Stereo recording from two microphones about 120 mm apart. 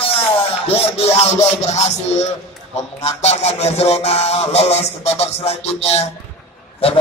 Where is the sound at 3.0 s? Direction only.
65° left (ahead or behind).